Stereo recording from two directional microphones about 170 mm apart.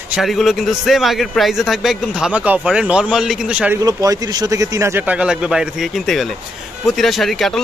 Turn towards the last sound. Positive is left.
turn(degrees=0)  # may be behind; listen again after turning